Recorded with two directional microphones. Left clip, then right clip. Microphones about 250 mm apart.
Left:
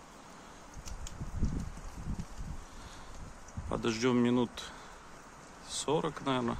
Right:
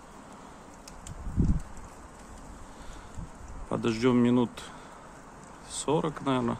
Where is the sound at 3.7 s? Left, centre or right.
Centre.